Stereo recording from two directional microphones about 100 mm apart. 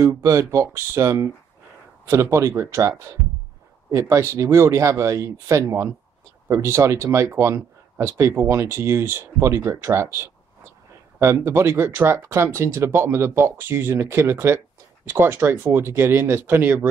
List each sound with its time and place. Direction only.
0.0 s speech: 30° right (ahead or behind)
2.3 s speech: 25° right (ahead or behind)